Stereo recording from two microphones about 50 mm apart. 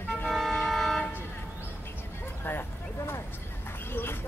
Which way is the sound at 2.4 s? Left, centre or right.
Left.